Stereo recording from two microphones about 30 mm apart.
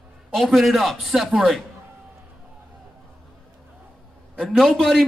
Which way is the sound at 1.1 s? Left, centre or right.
Centre.